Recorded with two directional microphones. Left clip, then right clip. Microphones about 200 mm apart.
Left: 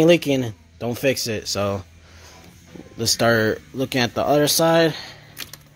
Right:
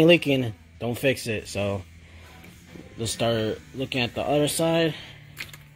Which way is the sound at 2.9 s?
30° left (ahead or behind).